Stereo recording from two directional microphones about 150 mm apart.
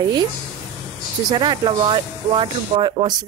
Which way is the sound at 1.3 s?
30° right (ahead or behind).